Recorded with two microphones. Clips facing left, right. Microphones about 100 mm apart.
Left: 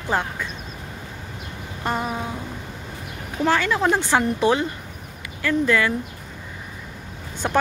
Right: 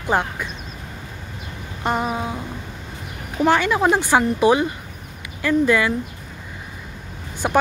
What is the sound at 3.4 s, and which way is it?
Speech, 15° right (ahead or behind).